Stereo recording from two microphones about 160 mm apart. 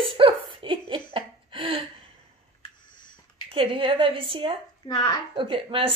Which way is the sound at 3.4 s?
35° right (ahead or behind).